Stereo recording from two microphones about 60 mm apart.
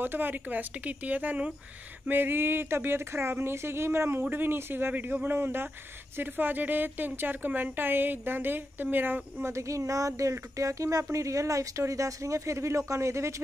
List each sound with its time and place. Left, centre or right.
0.0 s speech: right
2.0 s a woman's voice: right
9.5 s speech: right